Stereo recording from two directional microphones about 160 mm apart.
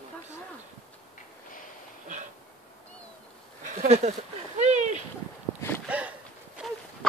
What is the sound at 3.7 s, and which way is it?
Speech, 45° right (ahead or behind).